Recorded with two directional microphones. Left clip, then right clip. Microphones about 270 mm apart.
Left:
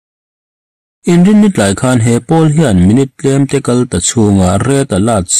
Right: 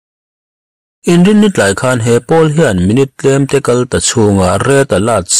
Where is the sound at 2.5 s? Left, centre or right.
Centre.